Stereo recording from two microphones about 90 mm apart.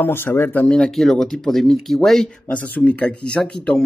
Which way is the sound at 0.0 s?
25° left (ahead or behind).